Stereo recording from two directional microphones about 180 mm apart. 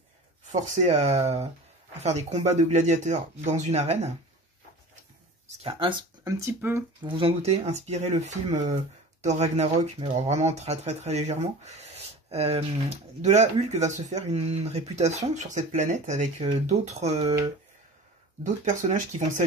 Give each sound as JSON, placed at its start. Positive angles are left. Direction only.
{"t": 0.5, "sound": "speech", "side_deg": -40}
{"t": 5.6, "sound": "speech", "side_deg": -30}
{"t": 7.0, "sound": "speech", "side_deg": -25}
{"t": 18.4, "sound": "speech", "side_deg": -45}